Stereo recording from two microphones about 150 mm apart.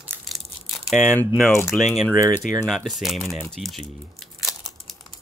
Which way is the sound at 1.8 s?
Centre (ahead or behind).